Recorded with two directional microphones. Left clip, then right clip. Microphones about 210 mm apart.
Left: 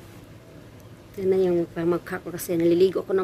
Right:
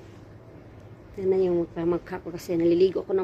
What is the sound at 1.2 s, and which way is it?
Speech, 10° left (ahead or behind).